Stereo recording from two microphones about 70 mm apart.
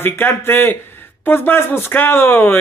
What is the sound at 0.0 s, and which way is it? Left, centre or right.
Speech, left.